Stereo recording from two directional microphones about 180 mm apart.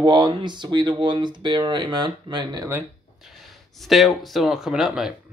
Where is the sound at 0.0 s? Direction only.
25° right (ahead or behind).